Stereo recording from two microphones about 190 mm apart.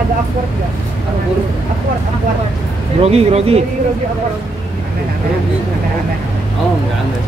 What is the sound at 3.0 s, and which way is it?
Speech, 30° right (ahead or behind).